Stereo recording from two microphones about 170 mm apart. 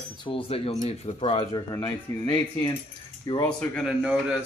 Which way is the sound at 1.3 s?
25° left (ahead or behind).